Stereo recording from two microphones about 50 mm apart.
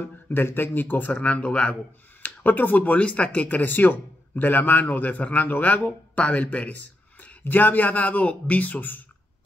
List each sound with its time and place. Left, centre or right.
0.3 s speech: left
2.2 s speech: left